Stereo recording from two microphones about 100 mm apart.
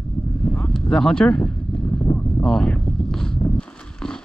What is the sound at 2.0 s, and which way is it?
Boat, 25° left (ahead or behind).